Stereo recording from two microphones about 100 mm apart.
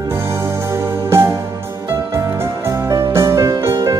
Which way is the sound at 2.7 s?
30° right (ahead or behind).